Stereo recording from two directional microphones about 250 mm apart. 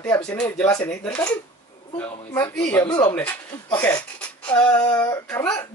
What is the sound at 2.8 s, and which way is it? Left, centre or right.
Speech, centre.